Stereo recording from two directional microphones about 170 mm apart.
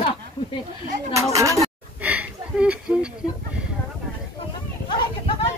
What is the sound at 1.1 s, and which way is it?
Speech, 20° right (ahead or behind).